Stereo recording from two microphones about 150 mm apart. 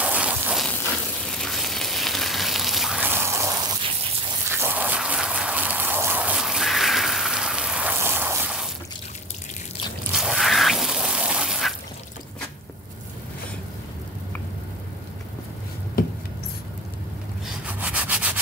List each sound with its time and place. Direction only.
0.0 s a sound: 10° right (ahead or behind)
1.3 s frying: centre (ahead or behind)
3.0 s water: 15° right (ahead or behind)
4.5 s a sound: 15° right (ahead or behind)
10.1 s water: 5° right (ahead or behind)
17.5 s rub: 10° right (ahead or behind)